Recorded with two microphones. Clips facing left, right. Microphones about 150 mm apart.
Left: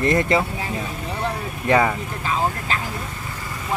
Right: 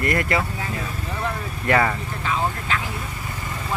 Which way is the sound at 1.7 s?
15° left (ahead or behind).